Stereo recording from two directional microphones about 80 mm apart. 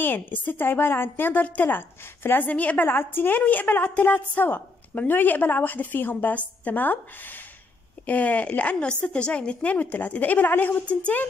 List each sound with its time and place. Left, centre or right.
0.0 s a woman's voice: left
8.1 s a woman's voice: centre